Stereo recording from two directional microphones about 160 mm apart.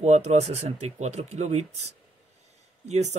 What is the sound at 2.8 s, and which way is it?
Speech, 45° right (ahead or behind).